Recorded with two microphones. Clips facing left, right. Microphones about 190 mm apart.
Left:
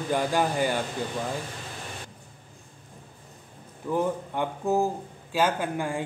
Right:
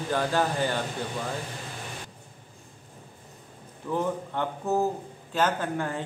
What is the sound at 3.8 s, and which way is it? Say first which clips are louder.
A man's voice: left 2 dB; 10° left (ahead or behind).